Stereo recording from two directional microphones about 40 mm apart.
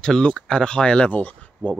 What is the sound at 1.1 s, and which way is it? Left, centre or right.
Speech, left.